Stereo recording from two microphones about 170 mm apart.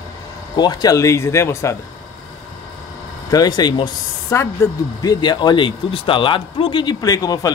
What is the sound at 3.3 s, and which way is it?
Speech, 25° left (ahead or behind).